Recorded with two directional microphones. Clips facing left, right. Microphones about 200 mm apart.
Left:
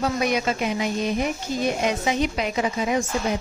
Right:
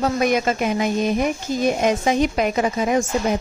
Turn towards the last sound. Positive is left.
turn(degrees=-50)  # may be behind; listen again after turning